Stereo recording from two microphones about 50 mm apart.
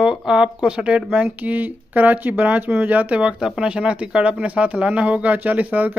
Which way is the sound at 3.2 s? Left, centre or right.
Centre.